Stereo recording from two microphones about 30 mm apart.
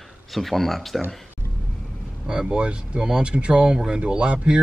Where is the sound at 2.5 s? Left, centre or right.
Right.